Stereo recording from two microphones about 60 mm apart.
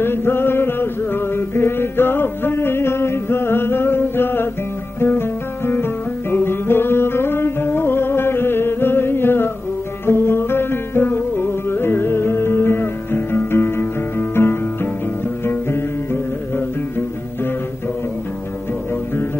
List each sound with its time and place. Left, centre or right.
0.0 s music: left